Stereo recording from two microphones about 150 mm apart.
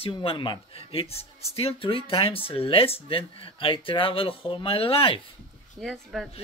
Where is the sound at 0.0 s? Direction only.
40° left (ahead or behind).